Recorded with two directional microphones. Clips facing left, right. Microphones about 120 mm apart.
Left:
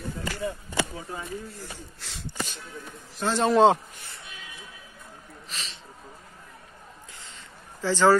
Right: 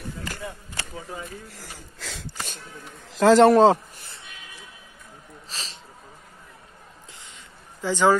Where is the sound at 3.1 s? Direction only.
90° right.